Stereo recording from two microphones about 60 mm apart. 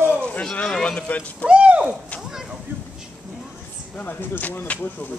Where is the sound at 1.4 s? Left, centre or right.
Centre.